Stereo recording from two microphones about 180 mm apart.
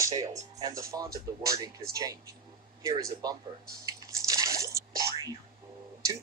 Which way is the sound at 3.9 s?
20° right (ahead or behind).